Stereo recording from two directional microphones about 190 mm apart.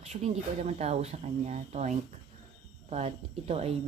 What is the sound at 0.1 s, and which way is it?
Speech, 35° right (ahead or behind).